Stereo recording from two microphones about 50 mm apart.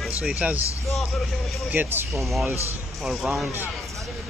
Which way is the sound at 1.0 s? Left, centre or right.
Centre.